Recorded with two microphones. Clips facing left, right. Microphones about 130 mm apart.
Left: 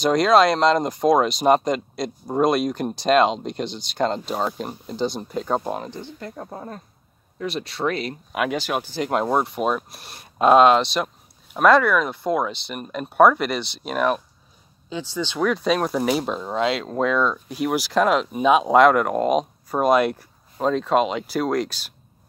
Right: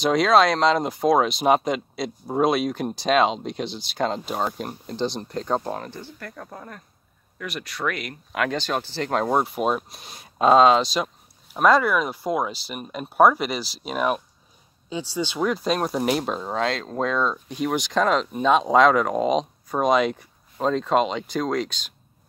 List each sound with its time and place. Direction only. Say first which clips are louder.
0.0 s speech: left 2 dB; centre (ahead or behind); by 8.2 s 30° left (ahead or behind)
8.3 s speech: even; 15° left (ahead or behind)